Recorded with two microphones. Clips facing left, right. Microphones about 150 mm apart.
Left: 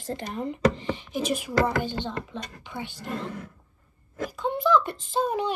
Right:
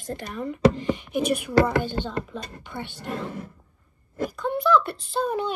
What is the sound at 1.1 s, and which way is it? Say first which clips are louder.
Speech: right 4 dB; 60° right (ahead or behind).